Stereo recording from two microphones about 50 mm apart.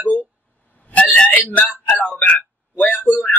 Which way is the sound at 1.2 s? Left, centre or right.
Left.